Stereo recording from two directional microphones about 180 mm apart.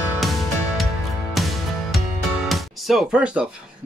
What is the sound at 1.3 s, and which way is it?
Music, centre (ahead or behind).